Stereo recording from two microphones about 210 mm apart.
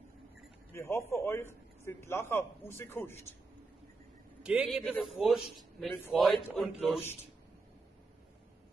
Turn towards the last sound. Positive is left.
turn(degrees=0)  # may be behind; listen again after turning